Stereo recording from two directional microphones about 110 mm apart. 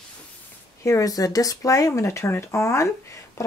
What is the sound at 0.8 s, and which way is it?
Speech, 30° left (ahead or behind).